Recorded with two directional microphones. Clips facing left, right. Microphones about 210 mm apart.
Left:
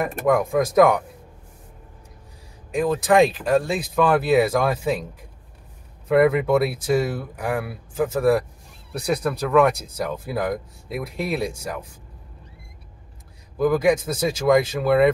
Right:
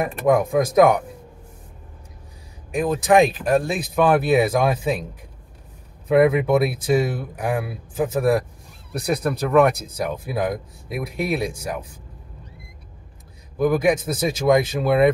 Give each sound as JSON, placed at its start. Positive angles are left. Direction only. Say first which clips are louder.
{"t": 0.3, "sound": "speech", "louder": "right 2 dB", "side_deg": -10}
{"t": 2.7, "sound": "speech", "louder": "right 1 dB", "side_deg": -15}
{"t": 6.0, "sound": "speech", "louder": "right 1 dB", "side_deg": -10}
{"t": 13.6, "sound": "a man's voice", "louder": "even", "side_deg": -20}